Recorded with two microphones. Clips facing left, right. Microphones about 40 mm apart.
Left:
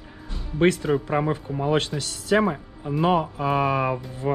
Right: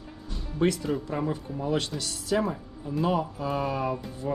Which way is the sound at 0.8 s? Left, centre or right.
Left.